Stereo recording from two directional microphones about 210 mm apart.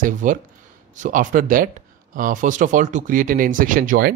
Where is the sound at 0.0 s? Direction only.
40° right (ahead or behind).